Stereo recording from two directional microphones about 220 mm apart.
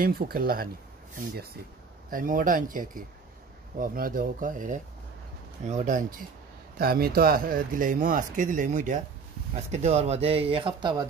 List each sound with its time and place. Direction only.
0.0 s speech: 40° right (ahead or behind)
2.0 s speech: 40° right (ahead or behind); by 11.1 s 20° right (ahead or behind)